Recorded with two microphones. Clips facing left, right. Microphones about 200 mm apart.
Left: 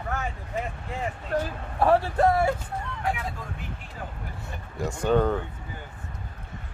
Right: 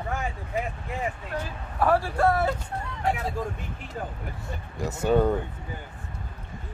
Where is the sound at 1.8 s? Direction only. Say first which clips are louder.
Left 2 dB; 25° left (ahead or behind).